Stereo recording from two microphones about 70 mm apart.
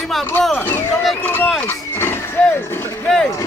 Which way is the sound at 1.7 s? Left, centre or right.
Left.